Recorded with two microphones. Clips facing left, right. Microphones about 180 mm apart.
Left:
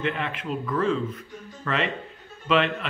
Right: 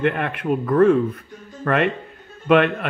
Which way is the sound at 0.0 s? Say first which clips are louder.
Right 7 dB; 55° right (ahead or behind).